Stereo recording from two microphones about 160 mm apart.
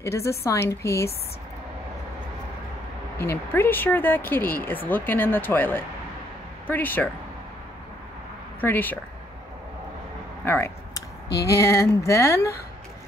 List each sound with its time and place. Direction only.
0.0 s speech: 20° left (ahead or behind)
3.2 s speech: 15° left (ahead or behind)
8.5 s speech: 10° left (ahead or behind)
10.4 s a sound: 15° left (ahead or behind)
11.5 s speech: 20° left (ahead or behind)